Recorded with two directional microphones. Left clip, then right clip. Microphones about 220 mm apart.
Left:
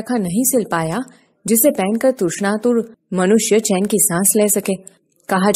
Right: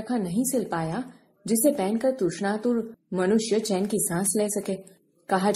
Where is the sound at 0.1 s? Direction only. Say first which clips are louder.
Left 9 dB; 35° left (ahead or behind).